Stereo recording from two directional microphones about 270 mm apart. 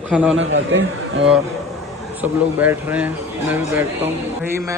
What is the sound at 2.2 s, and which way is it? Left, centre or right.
A man's voice, centre.